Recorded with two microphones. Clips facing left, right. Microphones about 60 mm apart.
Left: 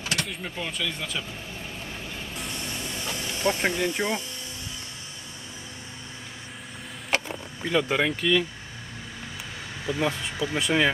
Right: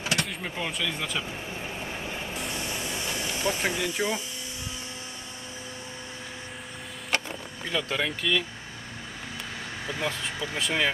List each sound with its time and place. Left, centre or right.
0.1 s power windows: centre
0.4 s speech: centre
1.9 s vehicle: right
2.3 s vehicle: centre
3.4 s speech: centre
7.7 s speech: centre
9.8 s speech: centre